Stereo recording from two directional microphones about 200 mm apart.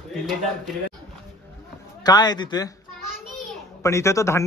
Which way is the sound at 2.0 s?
20° left (ahead or behind).